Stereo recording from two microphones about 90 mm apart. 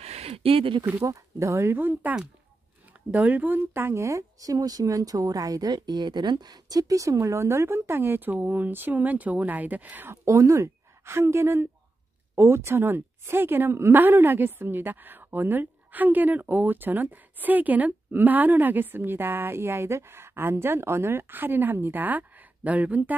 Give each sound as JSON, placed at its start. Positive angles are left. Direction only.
{"t": 0.3, "sound": "speech", "side_deg": -90}
{"t": 1.0, "sound": "a woman's voice", "side_deg": -40}
{"t": 10.2, "sound": "a woman's voice", "side_deg": -35}